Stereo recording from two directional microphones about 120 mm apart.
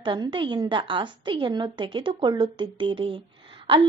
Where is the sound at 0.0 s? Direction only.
40° right (ahead or behind).